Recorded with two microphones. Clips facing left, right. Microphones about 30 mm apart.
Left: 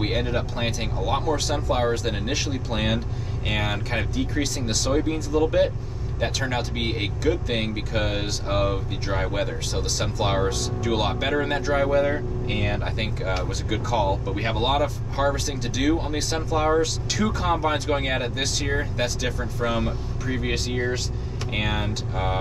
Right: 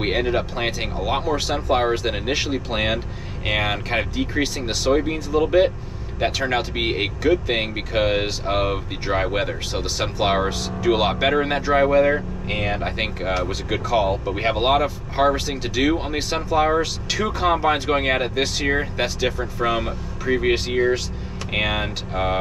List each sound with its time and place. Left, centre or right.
0.0 s speech: right